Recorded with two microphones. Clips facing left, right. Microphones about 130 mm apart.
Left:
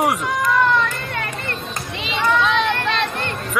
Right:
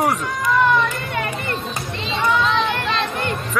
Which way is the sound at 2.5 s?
65° left (ahead or behind).